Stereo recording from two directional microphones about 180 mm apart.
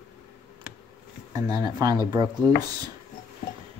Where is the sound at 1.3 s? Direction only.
20° right (ahead or behind).